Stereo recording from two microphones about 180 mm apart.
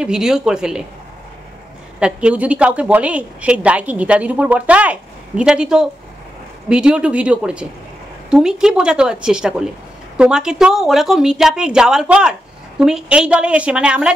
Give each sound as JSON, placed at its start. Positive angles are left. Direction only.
{"t": 0.0, "sound": "speech", "side_deg": -5}
{"t": 2.0, "sound": "a woman's voice", "side_deg": -5}